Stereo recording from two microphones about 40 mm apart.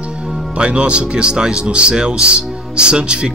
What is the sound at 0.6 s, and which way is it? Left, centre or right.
Speech, right.